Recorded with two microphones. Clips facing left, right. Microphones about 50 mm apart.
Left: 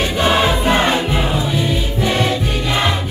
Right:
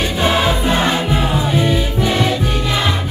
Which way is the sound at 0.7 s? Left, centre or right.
Left.